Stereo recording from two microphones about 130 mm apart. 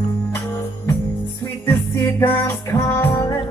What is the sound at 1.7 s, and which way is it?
Music, 20° left (ahead or behind).